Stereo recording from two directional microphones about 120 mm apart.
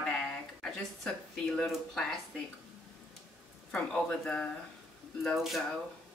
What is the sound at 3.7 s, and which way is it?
Speech, 10° left (ahead or behind).